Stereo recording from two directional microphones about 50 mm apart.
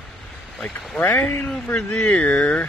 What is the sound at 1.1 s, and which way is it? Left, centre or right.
Speech, left.